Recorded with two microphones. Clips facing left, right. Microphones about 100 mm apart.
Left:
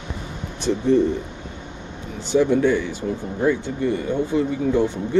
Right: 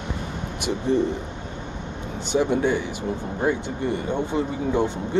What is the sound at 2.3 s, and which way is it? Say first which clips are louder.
Speech: left 4 dB; 20° right (ahead or behind).